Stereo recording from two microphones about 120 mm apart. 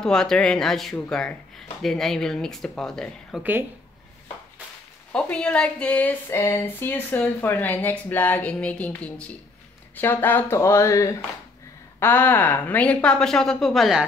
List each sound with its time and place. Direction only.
0.0 s speech: 5° left (ahead or behind)
5.1 s speech: 10° left (ahead or behind)